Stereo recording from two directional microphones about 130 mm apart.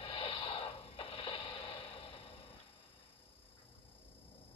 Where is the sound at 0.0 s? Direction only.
45° left (ahead or behind).